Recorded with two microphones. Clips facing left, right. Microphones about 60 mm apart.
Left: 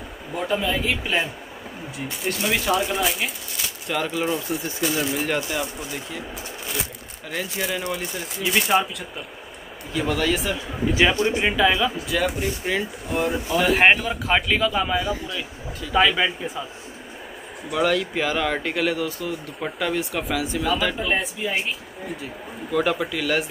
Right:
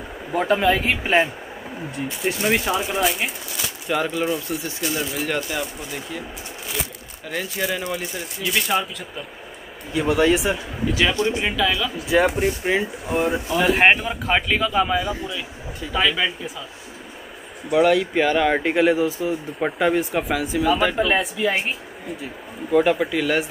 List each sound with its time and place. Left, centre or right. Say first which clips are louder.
0.3 s speech: right 5 dB; right
2.0 s speech: right 3 dB; centre
9.9 s speech: right 5 dB; centre
10.9 s speech: left 1 dB; centre
12.1 s speech: right 8 dB; right
13.1 s speech: right 1 dB; centre
17.6 s speech: right 5 dB; centre
20.9 s speech: right 4 dB; right
22.7 s speech: right 5 dB; centre